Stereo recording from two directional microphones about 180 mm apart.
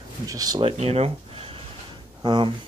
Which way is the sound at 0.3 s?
20° right (ahead or behind).